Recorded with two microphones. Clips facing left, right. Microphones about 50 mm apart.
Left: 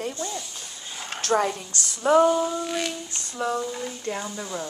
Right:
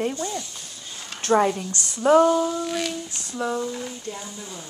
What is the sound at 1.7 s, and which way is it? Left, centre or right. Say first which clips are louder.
Speech: right 1 dB; right.